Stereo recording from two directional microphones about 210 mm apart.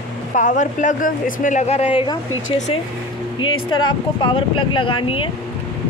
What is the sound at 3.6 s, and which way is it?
Speech, 20° left (ahead or behind).